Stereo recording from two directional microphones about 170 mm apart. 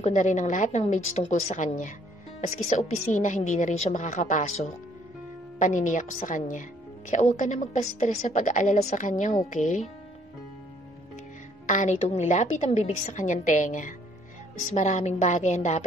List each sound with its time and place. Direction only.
0.0 s a woman's voice: 45° left (ahead or behind)
11.6 s a woman's voice: 45° left (ahead or behind)